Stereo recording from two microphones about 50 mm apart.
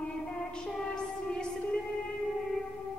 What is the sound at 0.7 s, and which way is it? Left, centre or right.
Music, centre.